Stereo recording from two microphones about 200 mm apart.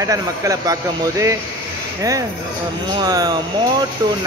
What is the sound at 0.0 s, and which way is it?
Speech, 15° right (ahead or behind).